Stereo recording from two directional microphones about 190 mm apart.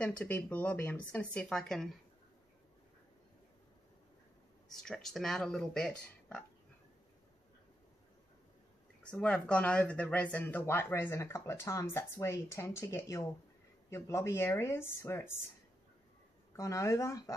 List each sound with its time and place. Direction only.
0.0 s speech: 10° left (ahead or behind)
4.6 s speech: centre (ahead or behind)
9.0 s speech: 5° left (ahead or behind)
16.5 s speech: 15° left (ahead or behind)